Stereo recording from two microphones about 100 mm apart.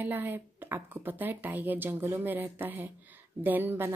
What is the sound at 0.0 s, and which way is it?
A woman's voice, 20° right (ahead or behind).